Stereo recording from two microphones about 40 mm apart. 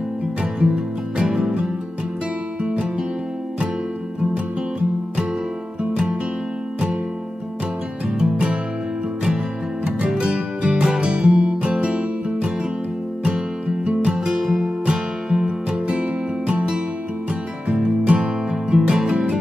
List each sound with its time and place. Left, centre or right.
0.4 s music: right
8.1 s music: right
10.0 s music: right
13.8 s music: right
17.6 s music: right
18.8 s music: centre